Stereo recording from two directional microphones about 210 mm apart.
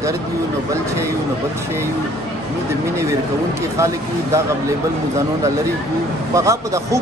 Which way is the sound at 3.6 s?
15° right (ahead or behind).